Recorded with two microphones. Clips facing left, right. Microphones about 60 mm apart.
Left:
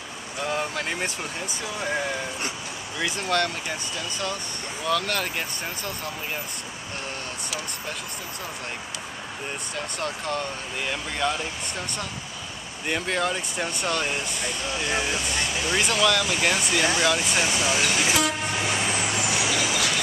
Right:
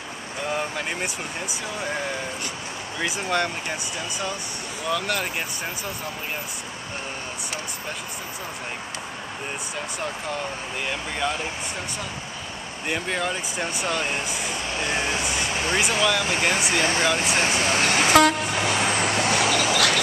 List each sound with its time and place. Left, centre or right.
0.5 s vehicle: centre
3.0 s speech: centre
4.8 s speech: centre
9.8 s speech: centre
12.8 s speech: centre
14.7 s speech: right
15.8 s speech: centre
16.7 s speech: right
17.2 s vehicle: right